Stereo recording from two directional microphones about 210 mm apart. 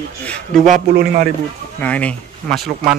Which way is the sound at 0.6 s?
40° right (ahead or behind).